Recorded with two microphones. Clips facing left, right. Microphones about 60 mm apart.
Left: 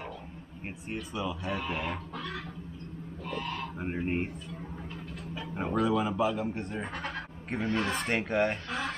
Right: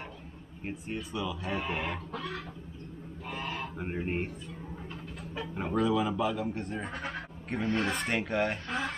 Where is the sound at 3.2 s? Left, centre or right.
Centre.